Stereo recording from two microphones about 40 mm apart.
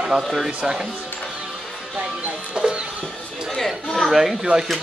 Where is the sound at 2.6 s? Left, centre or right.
Right.